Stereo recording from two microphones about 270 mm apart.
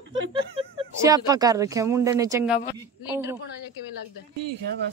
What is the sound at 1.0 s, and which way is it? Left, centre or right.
Speech, centre.